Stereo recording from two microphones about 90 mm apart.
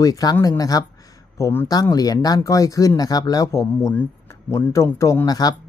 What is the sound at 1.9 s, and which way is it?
Speech, 45° left (ahead or behind).